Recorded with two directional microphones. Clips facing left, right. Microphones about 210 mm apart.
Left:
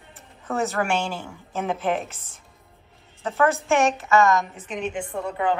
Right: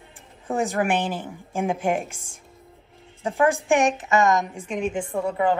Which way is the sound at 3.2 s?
15° right (ahead or behind).